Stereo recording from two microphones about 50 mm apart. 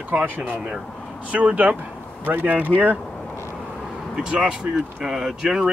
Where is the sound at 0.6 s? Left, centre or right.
Centre.